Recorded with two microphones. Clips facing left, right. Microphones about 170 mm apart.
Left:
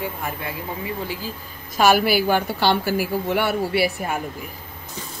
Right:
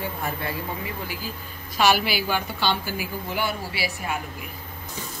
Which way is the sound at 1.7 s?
50° left (ahead or behind).